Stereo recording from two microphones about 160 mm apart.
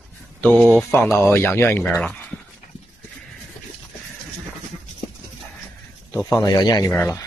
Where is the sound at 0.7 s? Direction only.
10° left (ahead or behind).